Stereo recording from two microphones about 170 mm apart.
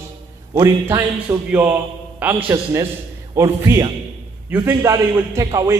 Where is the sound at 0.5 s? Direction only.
20° right (ahead or behind).